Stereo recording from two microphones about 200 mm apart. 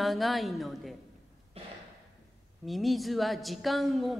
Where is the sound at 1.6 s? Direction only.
30° right (ahead or behind).